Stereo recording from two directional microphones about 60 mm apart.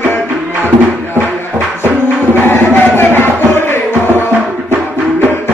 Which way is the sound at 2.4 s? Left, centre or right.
Left.